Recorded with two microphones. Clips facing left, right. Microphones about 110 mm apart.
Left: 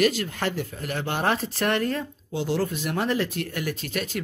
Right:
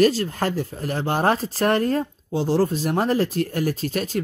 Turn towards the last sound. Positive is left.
turn(degrees=-35)  # may be behind; listen again after turning